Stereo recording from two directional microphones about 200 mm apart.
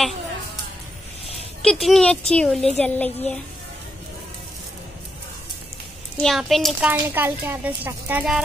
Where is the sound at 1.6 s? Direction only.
Centre (ahead or behind).